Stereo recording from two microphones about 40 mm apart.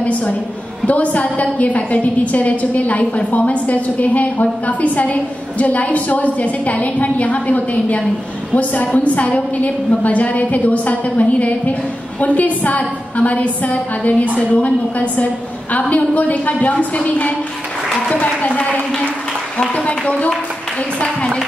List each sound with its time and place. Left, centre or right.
0.8 s a woman's voice: left
21.0 s speech: left